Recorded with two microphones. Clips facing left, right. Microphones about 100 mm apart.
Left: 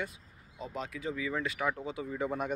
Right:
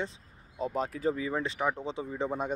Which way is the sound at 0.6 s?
45° right (ahead or behind).